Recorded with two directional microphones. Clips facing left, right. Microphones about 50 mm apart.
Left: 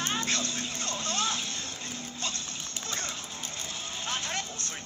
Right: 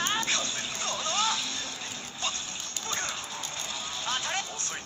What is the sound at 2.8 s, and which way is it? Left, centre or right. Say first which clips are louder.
Horse: right 3 dB; right.